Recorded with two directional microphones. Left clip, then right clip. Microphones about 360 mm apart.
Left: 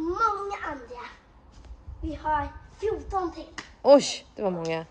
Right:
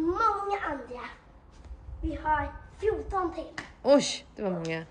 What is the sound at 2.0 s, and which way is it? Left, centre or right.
A child's voice, centre.